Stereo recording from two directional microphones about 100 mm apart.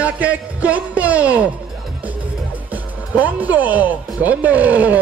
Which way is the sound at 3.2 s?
15° right (ahead or behind).